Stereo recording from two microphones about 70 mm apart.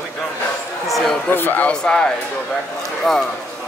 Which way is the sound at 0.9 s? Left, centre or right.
Centre.